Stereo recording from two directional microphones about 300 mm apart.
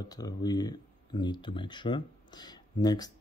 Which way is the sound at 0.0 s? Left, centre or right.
Centre.